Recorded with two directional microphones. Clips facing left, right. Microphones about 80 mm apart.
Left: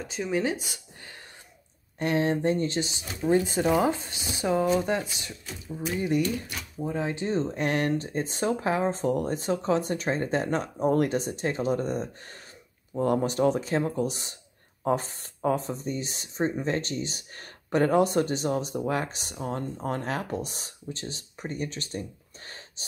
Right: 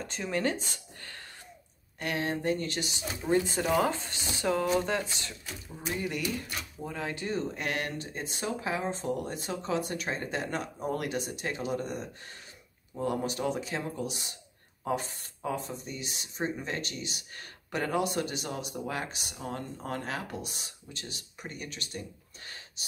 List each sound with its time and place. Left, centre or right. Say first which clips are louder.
0.0 s speech: left 3 dB; centre
2.0 s speech: left 7 dB; left